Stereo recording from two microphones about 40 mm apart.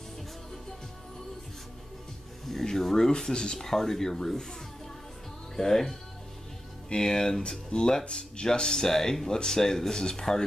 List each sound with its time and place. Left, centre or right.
2.4 s speech: centre
5.6 s speech: centre